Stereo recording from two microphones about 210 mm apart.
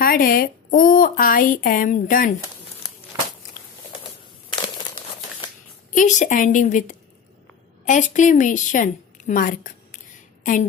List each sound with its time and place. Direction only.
0.0 s a woman's voice: 45° left (ahead or behind)
3.1 s a sound: 15° right (ahead or behind)
5.9 s a woman's voice: 35° left (ahead or behind)